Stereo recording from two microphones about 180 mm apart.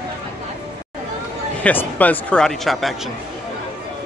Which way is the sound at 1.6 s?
10° left (ahead or behind).